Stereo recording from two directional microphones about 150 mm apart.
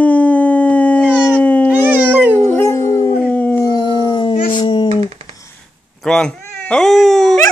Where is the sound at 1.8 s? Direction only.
15° right (ahead or behind).